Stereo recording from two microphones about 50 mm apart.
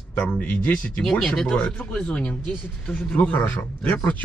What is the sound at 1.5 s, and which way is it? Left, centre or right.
A man's voice, left.